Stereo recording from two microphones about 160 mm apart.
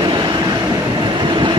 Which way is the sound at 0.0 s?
30° right (ahead or behind).